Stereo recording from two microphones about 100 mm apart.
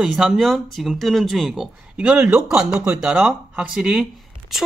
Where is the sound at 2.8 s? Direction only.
20° right (ahead or behind).